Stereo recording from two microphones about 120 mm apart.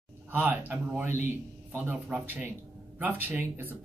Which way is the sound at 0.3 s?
15° right (ahead or behind).